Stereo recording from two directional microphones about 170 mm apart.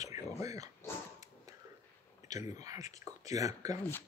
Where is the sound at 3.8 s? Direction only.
10° left (ahead or behind).